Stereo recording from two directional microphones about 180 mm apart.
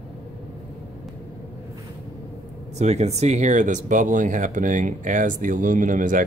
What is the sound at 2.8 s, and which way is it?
Speech, 40° right (ahead or behind).